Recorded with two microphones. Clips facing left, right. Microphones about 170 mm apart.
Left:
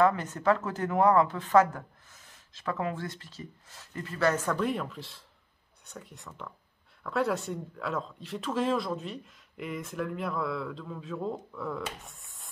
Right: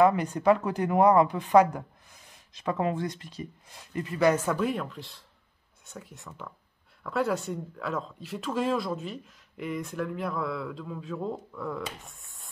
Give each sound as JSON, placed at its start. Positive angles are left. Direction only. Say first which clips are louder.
{"t": 0.0, "sound": "a woman's voice", "louder": "right 3 dB", "side_deg": -15}